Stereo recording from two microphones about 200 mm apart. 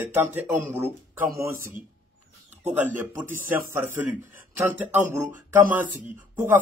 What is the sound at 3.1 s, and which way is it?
Speech, 10° right (ahead or behind).